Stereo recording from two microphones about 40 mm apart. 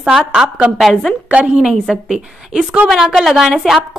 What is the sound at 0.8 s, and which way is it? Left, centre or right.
Speech, centre.